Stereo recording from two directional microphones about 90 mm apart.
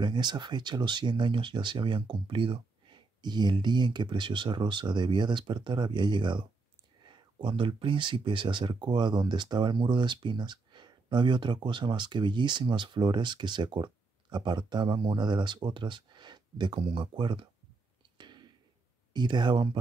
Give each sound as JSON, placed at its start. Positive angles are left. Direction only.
{"t": 0.0, "sound": "speech", "side_deg": -55}
{"t": 3.2, "sound": "speech", "side_deg": -55}
{"t": 18.1, "sound": "a sound", "side_deg": -55}
{"t": 19.1, "sound": "speech", "side_deg": -55}